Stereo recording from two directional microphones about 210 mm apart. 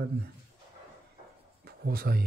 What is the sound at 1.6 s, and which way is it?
Speech, 45° right (ahead or behind).